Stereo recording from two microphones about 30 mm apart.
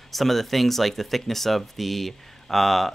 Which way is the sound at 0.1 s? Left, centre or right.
Centre.